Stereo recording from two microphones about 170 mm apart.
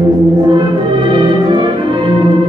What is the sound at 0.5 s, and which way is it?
Music, 30° right (ahead or behind).